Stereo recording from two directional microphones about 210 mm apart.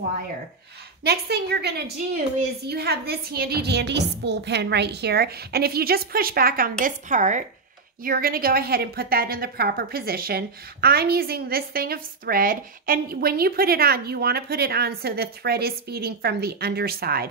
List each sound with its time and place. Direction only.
1.0 s a woman's voice: 50° right (ahead or behind)